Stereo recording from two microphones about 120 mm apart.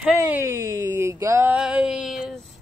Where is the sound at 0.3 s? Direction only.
20° right (ahead or behind).